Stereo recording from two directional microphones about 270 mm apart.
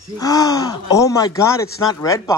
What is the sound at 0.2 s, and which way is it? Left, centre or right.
Speech, centre.